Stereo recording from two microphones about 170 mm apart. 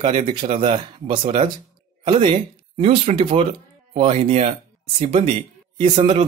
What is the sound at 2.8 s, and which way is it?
Speech, 35° right (ahead or behind).